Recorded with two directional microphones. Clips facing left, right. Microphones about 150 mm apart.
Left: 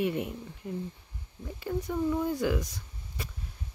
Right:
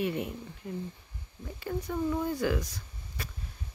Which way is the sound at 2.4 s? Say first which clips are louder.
Left 1 dB; 20° left (ahead or behind).